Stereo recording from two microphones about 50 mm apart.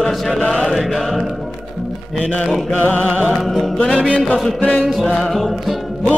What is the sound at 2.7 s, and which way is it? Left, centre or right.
Music, left.